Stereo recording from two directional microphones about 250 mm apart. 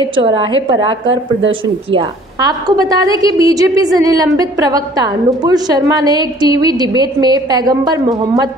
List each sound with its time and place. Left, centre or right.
0.0 s a woman's voice: centre